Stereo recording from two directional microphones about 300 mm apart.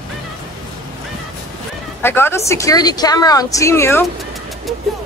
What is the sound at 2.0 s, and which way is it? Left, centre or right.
A woman's voice, centre.